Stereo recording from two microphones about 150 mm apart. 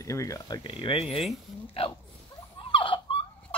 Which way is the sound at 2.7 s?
35° left (ahead or behind).